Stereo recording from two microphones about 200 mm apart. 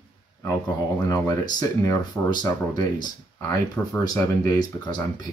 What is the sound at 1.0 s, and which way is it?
Speech, 20° left (ahead or behind).